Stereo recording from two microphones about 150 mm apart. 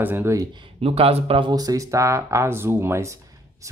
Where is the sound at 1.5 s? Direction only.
25° right (ahead or behind).